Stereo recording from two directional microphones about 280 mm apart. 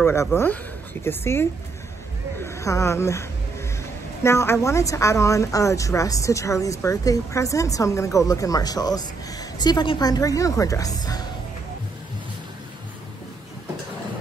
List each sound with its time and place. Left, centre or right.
0.0 s a woman's voice: centre